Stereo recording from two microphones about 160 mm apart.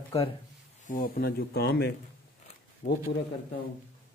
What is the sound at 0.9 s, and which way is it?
Speech, 60° left (ahead or behind).